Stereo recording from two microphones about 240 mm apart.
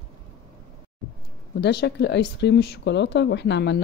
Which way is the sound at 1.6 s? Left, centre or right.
Left.